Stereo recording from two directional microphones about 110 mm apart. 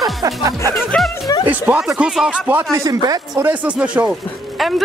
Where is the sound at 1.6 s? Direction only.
10° right (ahead or behind).